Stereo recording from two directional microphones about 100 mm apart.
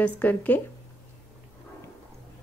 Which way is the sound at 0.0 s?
15° left (ahead or behind).